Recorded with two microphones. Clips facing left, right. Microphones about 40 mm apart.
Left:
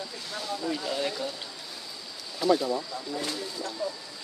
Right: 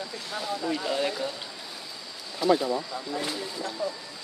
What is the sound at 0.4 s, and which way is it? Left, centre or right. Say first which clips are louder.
Speech: right 2 dB; centre.